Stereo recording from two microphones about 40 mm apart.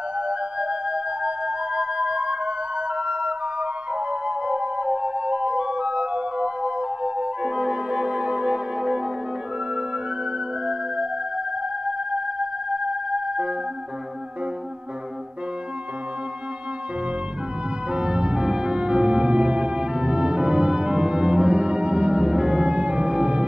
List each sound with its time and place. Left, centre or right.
0.3 s music: right
10.7 s music: right
17.9 s music: right